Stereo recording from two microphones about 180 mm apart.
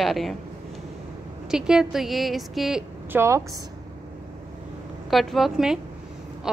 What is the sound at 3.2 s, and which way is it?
Speech, 15° right (ahead or behind).